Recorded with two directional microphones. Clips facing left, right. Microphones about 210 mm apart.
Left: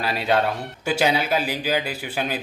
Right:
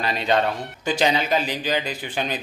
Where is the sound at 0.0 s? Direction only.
5° left (ahead or behind).